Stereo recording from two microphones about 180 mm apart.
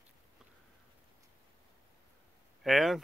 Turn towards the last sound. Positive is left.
turn(degrees=0)  # may be behind; listen again after turning